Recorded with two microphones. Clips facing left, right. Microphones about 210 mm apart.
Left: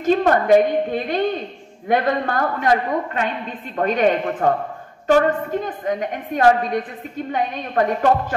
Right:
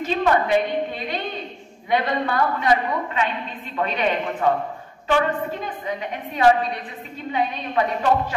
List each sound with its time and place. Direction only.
0.0 s a woman's voice: 50° left (ahead or behind)